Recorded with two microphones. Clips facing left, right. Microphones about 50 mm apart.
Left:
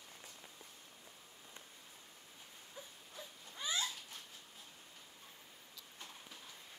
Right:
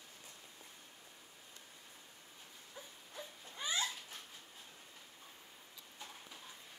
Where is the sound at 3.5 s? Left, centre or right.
Right.